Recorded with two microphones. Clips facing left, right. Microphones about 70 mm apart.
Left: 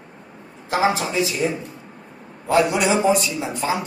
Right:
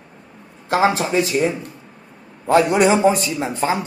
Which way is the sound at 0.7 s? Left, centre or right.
Right.